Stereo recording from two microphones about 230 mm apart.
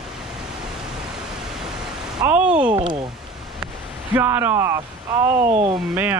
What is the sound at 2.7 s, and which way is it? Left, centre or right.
Speech, right.